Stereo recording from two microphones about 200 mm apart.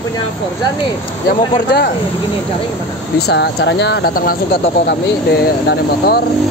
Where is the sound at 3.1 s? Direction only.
55° left (ahead or behind).